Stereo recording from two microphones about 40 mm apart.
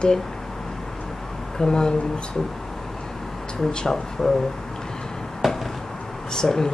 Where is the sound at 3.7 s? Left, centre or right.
Centre.